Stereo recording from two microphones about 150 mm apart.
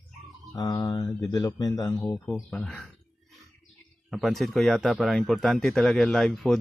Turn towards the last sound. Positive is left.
turn(degrees=0)  # may be behind; listen again after turning